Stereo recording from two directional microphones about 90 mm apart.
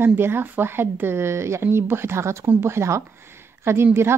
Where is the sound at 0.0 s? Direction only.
25° right (ahead or behind).